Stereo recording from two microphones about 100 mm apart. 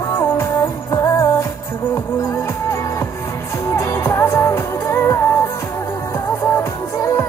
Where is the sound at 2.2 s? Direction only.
25° left (ahead or behind).